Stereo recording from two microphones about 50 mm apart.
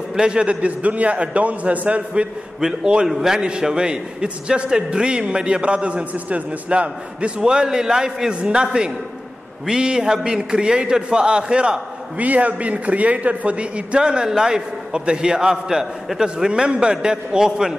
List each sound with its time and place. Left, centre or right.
0.1 s a man's voice: centre
2.6 s a man's voice: centre
12.2 s a man's voice: right; by 17.7 s centre